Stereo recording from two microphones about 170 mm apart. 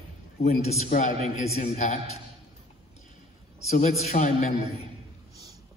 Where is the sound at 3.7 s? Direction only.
40° left (ahead or behind).